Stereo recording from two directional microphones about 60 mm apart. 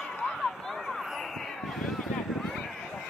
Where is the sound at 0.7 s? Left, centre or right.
Centre.